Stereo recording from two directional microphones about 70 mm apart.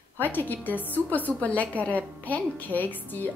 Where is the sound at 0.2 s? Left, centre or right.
Left.